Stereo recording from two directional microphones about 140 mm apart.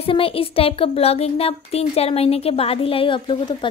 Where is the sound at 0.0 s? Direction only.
40° left (ahead or behind).